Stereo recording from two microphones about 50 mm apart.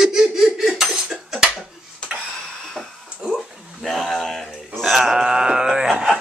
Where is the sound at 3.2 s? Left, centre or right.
Centre.